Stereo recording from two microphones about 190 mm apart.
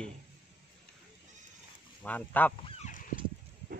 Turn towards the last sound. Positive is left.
turn(degrees=40)  # may be behind; listen again after turning